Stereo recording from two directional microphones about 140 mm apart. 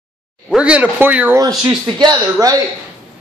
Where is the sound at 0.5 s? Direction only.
10° right (ahead or behind).